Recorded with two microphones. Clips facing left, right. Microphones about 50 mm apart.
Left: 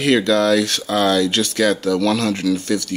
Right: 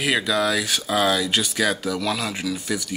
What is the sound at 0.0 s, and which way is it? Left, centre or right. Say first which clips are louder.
Speech: left 6 dB; centre.